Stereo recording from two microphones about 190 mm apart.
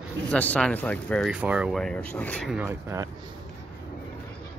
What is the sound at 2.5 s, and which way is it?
Speech, 5° right (ahead or behind).